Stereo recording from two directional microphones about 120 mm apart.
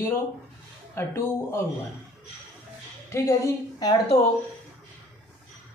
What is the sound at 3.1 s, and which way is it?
Speech, 25° left (ahead or behind).